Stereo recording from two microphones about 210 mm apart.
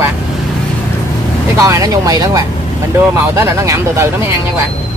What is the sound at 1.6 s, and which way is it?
Speech, 15° right (ahead or behind).